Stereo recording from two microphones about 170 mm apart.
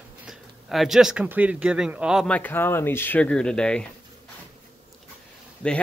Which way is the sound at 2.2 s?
10° left (ahead or behind).